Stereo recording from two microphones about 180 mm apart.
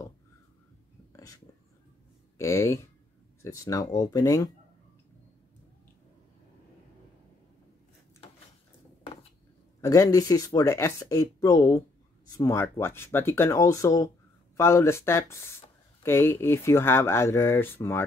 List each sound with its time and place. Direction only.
1.1 s whispering: 20° left (ahead or behind)
2.3 s speech: 15° left (ahead or behind)
9.8 s speech: 20° left (ahead or behind)